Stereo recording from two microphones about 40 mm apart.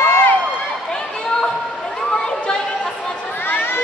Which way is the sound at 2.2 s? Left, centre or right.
Left.